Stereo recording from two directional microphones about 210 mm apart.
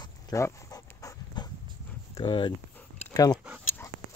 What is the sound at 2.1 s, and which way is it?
Speech, 20° left (ahead or behind).